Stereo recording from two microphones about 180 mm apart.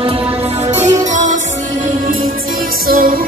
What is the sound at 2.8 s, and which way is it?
Music, 55° right (ahead or behind).